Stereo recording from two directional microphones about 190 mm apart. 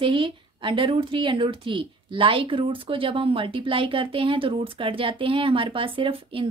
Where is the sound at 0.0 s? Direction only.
25° right (ahead or behind).